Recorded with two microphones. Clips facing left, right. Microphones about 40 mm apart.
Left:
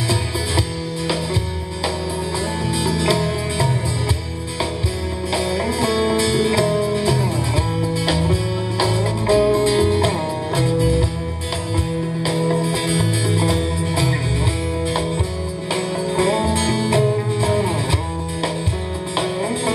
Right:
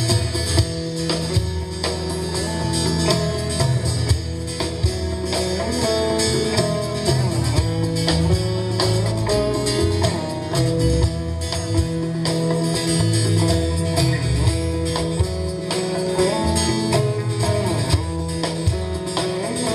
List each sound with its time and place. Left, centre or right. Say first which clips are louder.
0.1 s music: left 3 dB; left
2.8 s music: left 2 dB; left
5.3 s music: left 2 dB; left
12.3 s music: left 2 dB; left
15.7 s music: left 1 dB; left